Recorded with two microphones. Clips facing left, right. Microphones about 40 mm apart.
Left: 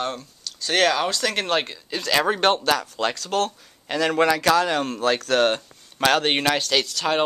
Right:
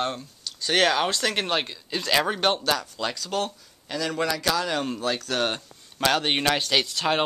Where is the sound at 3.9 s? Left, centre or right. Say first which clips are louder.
Left 7 dB; left.